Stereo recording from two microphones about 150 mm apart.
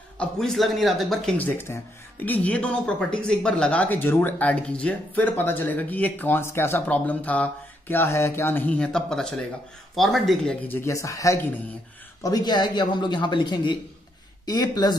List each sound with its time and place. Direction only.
0.2 s speech: 5° left (ahead or behind)
1.4 s speech: 15° left (ahead or behind)
10.8 s speech: 20° left (ahead or behind)